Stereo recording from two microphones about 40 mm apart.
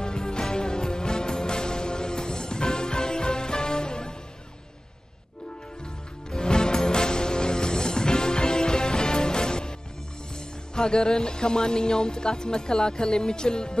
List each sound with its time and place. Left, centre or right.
0.0 s music: centre
6.3 s music: centre
10.7 s speech: centre